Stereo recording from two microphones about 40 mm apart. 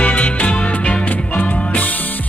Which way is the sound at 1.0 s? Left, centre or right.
Left.